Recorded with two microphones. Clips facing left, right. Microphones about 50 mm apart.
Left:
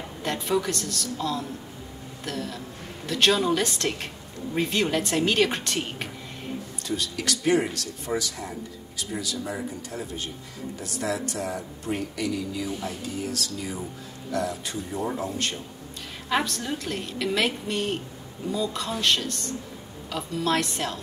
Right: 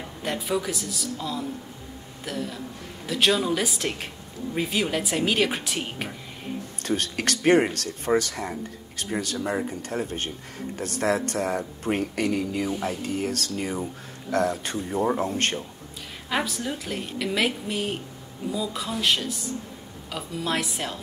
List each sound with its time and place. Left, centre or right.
0.0 s a woman's voice: centre
6.8 s speech: right
16.3 s a woman's voice: centre